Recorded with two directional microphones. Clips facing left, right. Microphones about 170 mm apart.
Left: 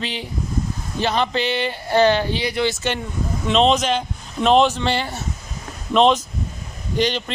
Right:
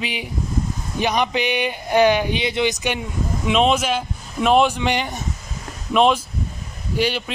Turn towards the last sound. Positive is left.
turn(degrees=-10)  # may be behind; listen again after turning